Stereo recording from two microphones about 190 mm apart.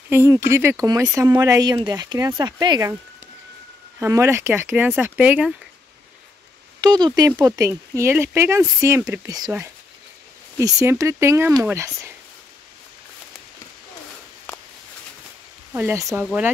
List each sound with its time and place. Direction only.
0.1 s speech: 15° right (ahead or behind)
4.0 s speech: 15° right (ahead or behind)
6.8 s speech: 20° right (ahead or behind)
10.6 s speech: 15° right (ahead or behind)
15.7 s speech: 10° right (ahead or behind)